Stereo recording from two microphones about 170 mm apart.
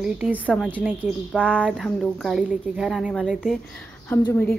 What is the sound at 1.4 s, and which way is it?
A woman's voice, 10° right (ahead or behind).